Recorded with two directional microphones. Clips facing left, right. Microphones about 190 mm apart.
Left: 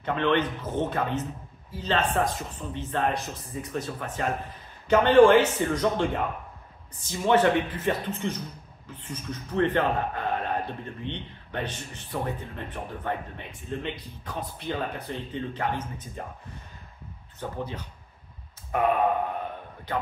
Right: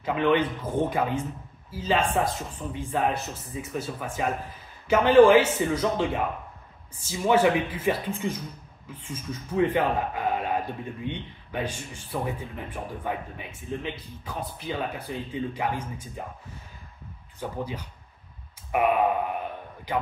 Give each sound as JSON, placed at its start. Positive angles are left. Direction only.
{"t": 0.0, "sound": "speech", "side_deg": -10}
{"t": 17.4, "sound": "speech", "side_deg": -10}